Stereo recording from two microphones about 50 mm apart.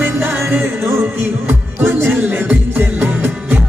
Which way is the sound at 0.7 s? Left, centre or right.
Right.